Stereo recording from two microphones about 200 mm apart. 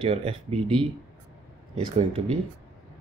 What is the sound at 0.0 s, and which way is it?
Speech, 30° right (ahead or behind).